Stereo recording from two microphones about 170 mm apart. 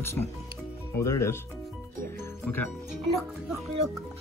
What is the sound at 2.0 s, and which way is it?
Music, 10° left (ahead or behind).